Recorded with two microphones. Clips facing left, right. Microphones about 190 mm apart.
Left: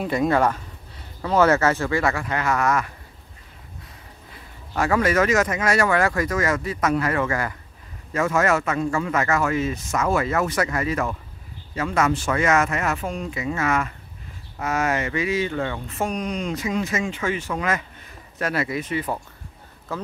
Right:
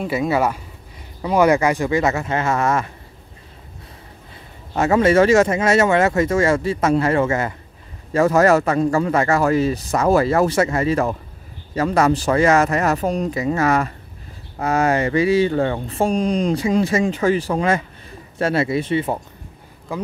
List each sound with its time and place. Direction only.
0.0 s speech: 5° right (ahead or behind); by 2.9 s 25° right (ahead or behind)
4.7 s speech: 25° right (ahead or behind)
8.1 s speech: 35° right (ahead or behind)
19.9 s speech: 15° right (ahead or behind)